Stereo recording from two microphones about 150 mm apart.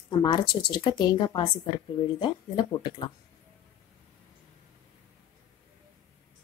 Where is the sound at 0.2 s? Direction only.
30° left (ahead or behind).